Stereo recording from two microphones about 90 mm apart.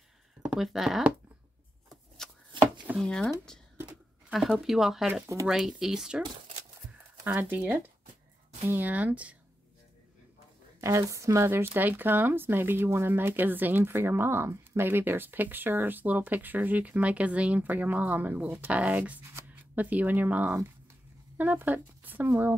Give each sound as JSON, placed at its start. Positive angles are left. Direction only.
{"t": 0.4, "sound": "speech", "side_deg": -5}
{"t": 1.9, "sound": "shuffling cards", "side_deg": 5}
{"t": 3.0, "sound": "speech", "side_deg": 10}
{"t": 4.3, "sound": "speech", "side_deg": 0}
{"t": 7.3, "sound": "speech", "side_deg": -20}
{"t": 10.8, "sound": "speech", "side_deg": -35}